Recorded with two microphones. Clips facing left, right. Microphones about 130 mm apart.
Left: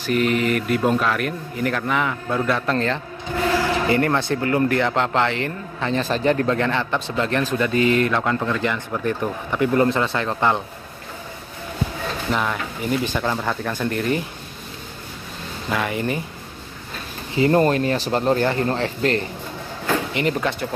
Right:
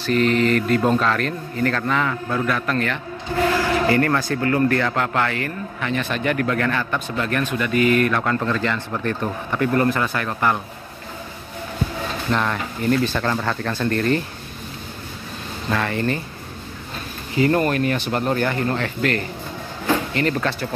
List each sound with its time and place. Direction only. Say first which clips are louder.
0.0 s a man's voice: right 2 dB; 10° left (ahead or behind)
12.3 s a man's voice: right 1 dB; 5° left (ahead or behind)
15.7 s a man's voice: right 1 dB; 15° left (ahead or behind)
17.4 s a man's voice: left 1 dB; 25° left (ahead or behind)
20.2 s a man's voice: even; 15° left (ahead or behind)